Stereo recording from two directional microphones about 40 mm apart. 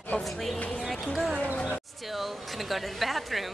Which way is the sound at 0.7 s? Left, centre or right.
Centre.